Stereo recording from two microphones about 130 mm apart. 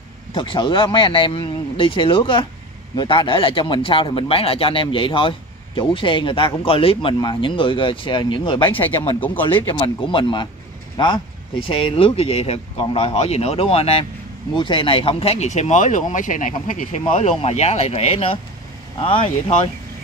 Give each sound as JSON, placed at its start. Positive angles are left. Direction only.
{"t": 0.3, "sound": "speech", "side_deg": 40}